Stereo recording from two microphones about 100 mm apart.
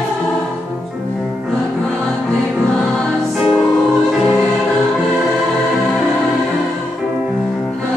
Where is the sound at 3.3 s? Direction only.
Centre (ahead or behind).